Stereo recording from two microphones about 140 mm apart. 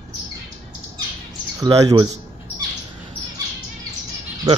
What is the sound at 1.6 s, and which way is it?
Speech, 25° right (ahead or behind).